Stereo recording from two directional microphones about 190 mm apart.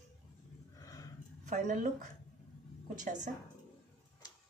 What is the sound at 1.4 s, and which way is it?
Speech, 40° right (ahead or behind).